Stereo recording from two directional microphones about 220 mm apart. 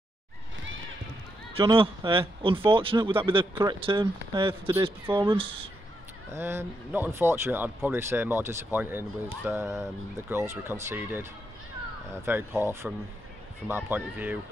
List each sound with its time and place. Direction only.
1.6 s speech: 25° right (ahead or behind)
6.3 s speech: 10° right (ahead or behind)